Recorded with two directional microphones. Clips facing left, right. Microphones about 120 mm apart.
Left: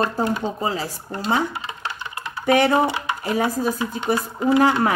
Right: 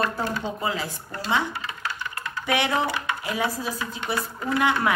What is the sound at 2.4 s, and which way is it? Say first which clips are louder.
Speech: left 7 dB; 40° left (ahead or behind).